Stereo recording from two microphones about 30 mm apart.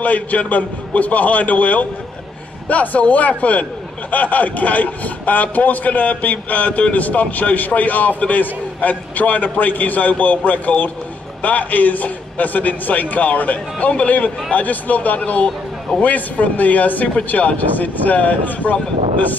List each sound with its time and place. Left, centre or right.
0.0 s a man's voice: left
16.0 s a man's voice: left